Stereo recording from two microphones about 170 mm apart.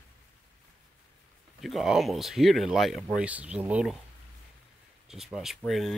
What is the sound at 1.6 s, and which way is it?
Speech, centre (ahead or behind).